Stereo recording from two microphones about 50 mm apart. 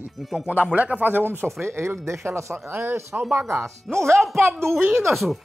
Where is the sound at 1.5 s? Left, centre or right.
Right.